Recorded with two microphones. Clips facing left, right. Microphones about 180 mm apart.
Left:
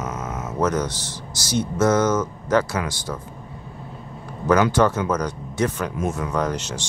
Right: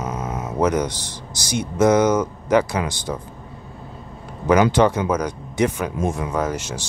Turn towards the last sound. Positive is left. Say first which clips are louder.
# right 1 dB
turn(degrees=-10)  # may be behind; listen again after turning